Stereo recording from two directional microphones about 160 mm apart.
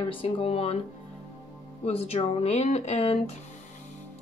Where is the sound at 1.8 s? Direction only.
40° left (ahead or behind).